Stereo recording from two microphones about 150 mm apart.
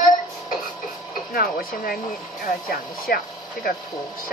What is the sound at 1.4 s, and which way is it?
Speech, 80° left.